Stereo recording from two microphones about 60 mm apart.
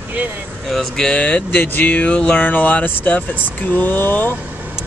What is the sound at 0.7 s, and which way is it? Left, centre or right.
Speech, centre.